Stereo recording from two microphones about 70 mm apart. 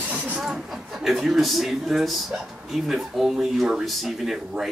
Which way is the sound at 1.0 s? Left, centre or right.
Centre.